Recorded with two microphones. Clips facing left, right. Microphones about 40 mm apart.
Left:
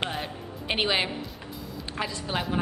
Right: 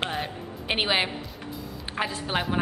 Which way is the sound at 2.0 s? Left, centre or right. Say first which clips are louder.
Right 3 dB; right.